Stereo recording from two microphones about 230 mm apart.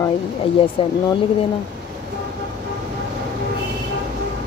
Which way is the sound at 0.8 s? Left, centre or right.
Left.